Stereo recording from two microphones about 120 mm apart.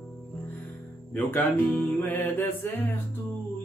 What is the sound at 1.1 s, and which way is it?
Music, 15° left (ahead or behind).